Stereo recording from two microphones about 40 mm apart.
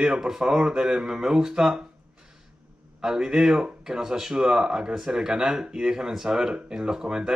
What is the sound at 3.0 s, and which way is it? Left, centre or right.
Speech, centre.